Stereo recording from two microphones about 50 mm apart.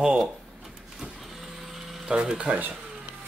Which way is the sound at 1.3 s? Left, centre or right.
Centre.